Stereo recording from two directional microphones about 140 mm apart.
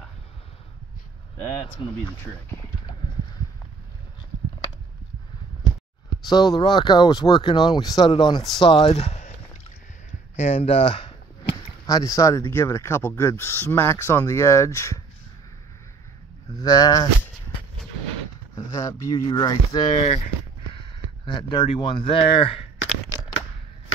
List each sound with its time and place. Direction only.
2.0 s speech: 15° left (ahead or behind)
6.2 s speech: 30° left (ahead or behind); by 9.3 s 50° left (ahead or behind)
10.3 s speech: 50° left (ahead or behind)
11.8 s speech: 25° left (ahead or behind)
16.5 s speech: 25° left (ahead or behind)
18.5 s a sound: 25° left (ahead or behind)
19.2 s speech: 30° left (ahead or behind)